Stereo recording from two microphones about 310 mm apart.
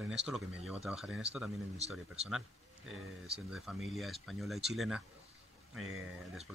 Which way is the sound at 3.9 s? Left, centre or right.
Centre.